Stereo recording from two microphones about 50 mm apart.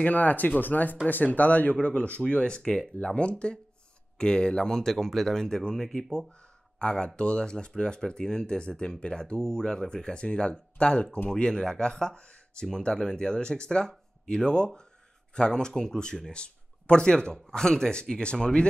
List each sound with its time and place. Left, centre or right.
0.0 s speech: left